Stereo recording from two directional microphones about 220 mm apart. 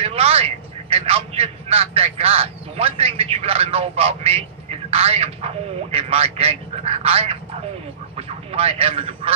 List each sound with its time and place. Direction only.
0.0 s a man's voice: 25° right (ahead or behind)